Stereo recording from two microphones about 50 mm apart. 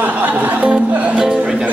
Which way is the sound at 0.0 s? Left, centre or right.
Right.